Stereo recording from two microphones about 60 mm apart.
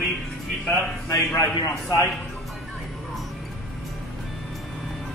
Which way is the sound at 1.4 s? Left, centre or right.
Left.